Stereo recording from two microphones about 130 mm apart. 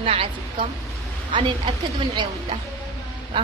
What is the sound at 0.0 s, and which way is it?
Speech, 45° right (ahead or behind).